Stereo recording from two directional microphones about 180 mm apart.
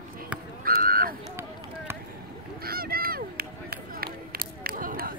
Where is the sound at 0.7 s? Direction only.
55° right (ahead or behind).